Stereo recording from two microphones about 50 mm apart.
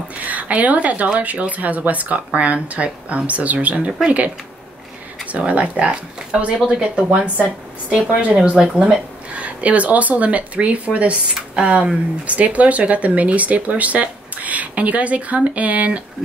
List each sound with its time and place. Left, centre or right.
0.2 s speech: right
5.2 s speech: right